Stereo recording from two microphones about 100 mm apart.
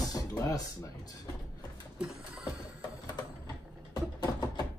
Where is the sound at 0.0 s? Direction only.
40° left (ahead or behind).